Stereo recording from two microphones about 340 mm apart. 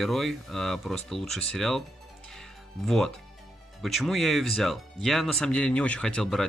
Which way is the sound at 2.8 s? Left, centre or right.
Centre.